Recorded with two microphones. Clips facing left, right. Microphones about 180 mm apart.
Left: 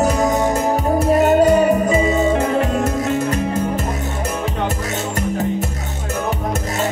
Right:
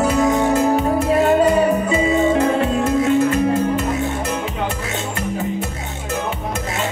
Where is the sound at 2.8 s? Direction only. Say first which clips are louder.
Right 3 dB; 40° left (ahead or behind).